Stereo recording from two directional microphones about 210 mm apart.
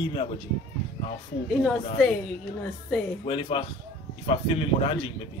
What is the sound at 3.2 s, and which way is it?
Speech, 25° left (ahead or behind).